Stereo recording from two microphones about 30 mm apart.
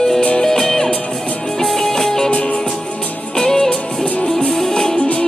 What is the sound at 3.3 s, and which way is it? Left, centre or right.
Music, centre.